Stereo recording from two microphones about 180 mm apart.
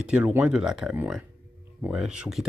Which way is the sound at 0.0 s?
5° right (ahead or behind).